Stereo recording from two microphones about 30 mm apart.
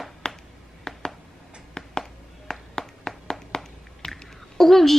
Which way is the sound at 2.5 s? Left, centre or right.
Centre.